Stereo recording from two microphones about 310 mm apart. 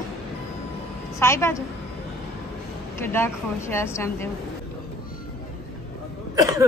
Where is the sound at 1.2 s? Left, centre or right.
Centre.